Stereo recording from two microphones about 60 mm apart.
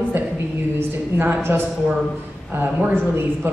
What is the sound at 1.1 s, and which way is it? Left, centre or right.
Speech, right.